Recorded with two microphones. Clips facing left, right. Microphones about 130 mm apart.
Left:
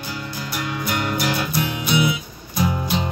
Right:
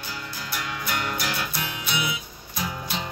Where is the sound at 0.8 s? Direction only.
20° left (ahead or behind).